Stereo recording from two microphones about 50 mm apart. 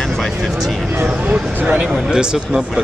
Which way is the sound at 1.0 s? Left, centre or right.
Right.